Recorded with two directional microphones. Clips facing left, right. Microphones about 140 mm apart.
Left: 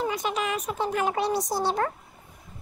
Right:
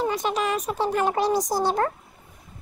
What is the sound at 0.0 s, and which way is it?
Speech, 35° right (ahead or behind).